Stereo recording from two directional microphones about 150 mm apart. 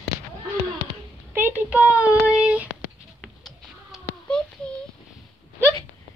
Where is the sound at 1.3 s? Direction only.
15° right (ahead or behind).